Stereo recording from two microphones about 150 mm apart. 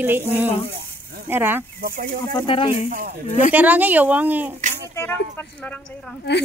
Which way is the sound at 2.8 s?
65° right (ahead or behind).